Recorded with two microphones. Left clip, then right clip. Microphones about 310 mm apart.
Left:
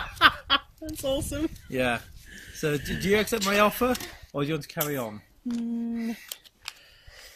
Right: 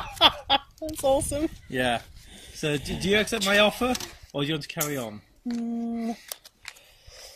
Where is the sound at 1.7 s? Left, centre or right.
Centre.